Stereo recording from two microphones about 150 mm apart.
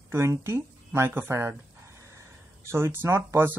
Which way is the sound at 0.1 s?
15° right (ahead or behind).